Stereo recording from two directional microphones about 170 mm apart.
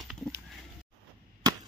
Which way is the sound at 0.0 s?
Centre (ahead or behind).